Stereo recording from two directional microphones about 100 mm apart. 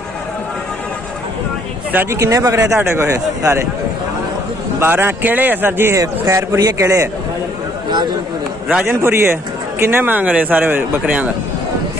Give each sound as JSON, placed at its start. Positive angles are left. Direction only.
{"t": 1.9, "sound": "speech", "side_deg": -20}
{"t": 2.1, "sound": "a man's voice", "side_deg": -30}
{"t": 4.7, "sound": "a man's voice", "side_deg": -25}
{"t": 5.9, "sound": "a man's voice", "side_deg": -35}
{"t": 8.6, "sound": "a man's voice", "side_deg": -20}